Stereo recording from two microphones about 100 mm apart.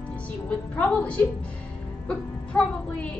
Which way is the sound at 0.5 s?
10° left (ahead or behind).